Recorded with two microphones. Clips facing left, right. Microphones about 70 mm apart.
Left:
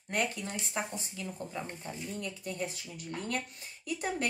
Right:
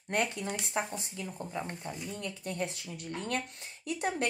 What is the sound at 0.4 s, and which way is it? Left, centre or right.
A woman's voice, centre.